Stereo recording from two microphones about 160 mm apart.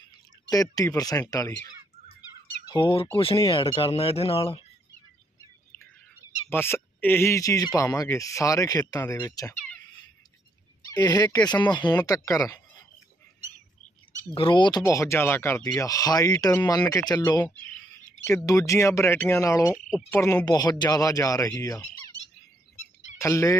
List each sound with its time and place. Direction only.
0.5 s speech: 20° left (ahead or behind)
2.7 s speech: 30° left (ahead or behind)
5.7 s bird: 15° left (ahead or behind)
6.5 s speech: 15° left (ahead or behind)
10.9 s speech: 25° left (ahead or behind)
14.3 s speech: 30° left (ahead or behind)
14.8 s speech: 20° left (ahead or behind)
23.1 s speech: 20° left (ahead or behind)